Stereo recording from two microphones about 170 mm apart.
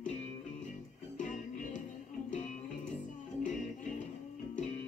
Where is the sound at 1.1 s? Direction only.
45° left (ahead or behind).